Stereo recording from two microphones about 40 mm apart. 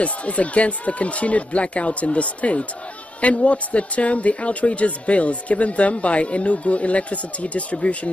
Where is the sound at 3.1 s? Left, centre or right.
Left.